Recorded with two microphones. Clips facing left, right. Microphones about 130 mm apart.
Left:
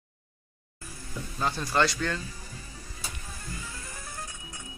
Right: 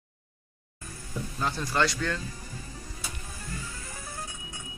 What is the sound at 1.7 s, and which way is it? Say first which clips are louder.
Speech: left 1 dB; 5° left (ahead or behind).